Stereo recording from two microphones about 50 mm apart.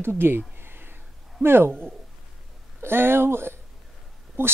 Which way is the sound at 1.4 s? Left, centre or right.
Right.